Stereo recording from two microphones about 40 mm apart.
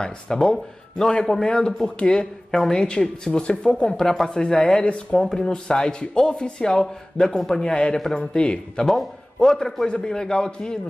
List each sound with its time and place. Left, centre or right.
0.3 s a man's voice: centre
3.9 s a man's voice: centre
4.4 s a man's voice: left
8.8 s a man's voice: centre
9.8 s speech: left